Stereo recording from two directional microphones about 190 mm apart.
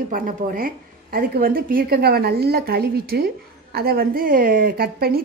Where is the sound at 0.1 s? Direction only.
45° right (ahead or behind).